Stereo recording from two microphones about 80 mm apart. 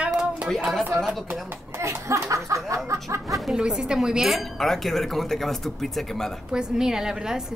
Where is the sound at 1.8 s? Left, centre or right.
Right.